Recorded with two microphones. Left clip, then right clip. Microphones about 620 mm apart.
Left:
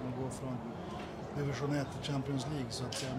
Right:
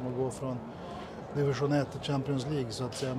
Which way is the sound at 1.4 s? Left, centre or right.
Centre.